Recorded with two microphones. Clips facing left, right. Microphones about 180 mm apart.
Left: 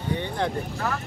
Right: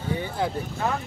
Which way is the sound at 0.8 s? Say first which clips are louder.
Right 3 dB; 20° right (ahead or behind).